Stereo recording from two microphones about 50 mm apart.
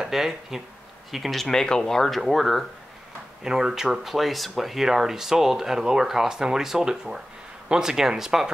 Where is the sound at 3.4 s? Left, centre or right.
Centre.